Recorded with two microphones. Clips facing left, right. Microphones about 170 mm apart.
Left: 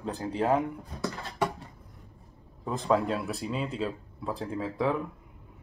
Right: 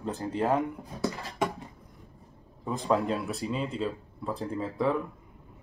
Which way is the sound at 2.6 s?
Centre (ahead or behind).